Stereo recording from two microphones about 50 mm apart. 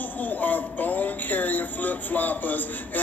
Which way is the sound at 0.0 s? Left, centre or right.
Left.